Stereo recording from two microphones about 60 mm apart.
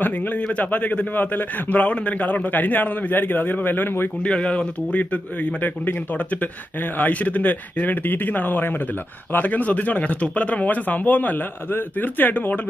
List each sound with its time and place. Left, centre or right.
0.6 s a man's voice: left
4.2 s a man's voice: centre
7.0 s a man's voice: left